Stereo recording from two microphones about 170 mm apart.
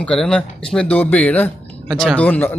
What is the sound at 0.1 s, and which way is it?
Speech, 5° left (ahead or behind).